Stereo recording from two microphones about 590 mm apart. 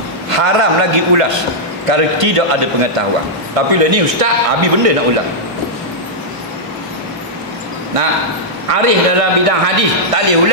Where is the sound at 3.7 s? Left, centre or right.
Right.